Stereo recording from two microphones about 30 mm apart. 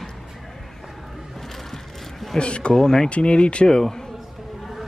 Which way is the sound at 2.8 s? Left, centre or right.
Centre.